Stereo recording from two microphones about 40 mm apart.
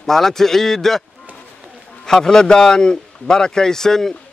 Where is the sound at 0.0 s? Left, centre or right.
Centre.